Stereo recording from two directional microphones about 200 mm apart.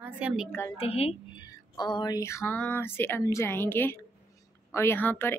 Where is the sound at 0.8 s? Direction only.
30° left (ahead or behind).